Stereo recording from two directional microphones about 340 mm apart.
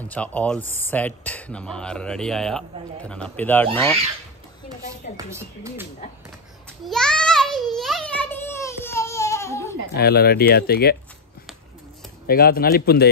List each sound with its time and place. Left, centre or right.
0.1 s speech: centre
5.1 s speech: centre
6.8 s a sound: centre
9.9 s speech: left
12.3 s speech: left